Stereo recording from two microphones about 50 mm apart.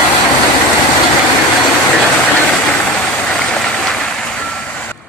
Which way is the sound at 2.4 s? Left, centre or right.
Left.